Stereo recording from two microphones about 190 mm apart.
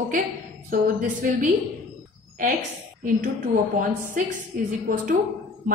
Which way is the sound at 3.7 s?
45° right (ahead or behind).